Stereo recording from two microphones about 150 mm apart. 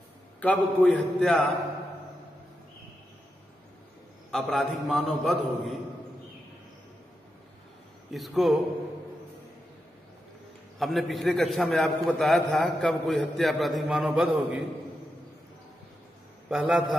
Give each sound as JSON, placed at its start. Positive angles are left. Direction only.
{"t": 0.4, "sound": "a man's voice", "side_deg": 5}
{"t": 4.3, "sound": "a man's voice", "side_deg": 0}
{"t": 8.1, "sound": "a man's voice", "side_deg": 0}
{"t": 10.8, "sound": "a man's voice", "side_deg": 0}
{"t": 16.4, "sound": "a man's voice", "side_deg": -5}